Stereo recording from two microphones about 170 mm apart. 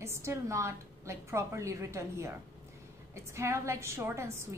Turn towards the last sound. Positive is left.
turn(degrees=-15)  # may be behind; listen again after turning